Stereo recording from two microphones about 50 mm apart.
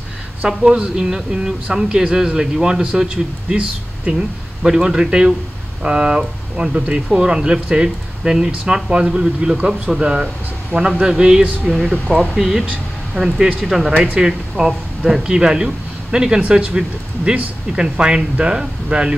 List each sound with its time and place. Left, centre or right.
0.6 s speech: centre
11.6 s speech: centre
13.9 s speech: right
14.2 s speech: centre